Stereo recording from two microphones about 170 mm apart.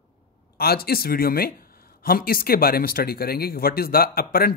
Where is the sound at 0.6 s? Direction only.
65° left (ahead or behind).